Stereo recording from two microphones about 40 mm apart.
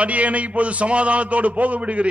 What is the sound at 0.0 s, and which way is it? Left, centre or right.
A man's voice, right.